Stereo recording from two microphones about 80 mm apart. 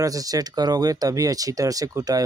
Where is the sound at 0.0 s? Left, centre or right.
Right.